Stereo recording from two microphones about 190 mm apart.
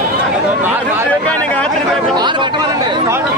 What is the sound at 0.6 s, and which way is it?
Speech, 10° right (ahead or behind).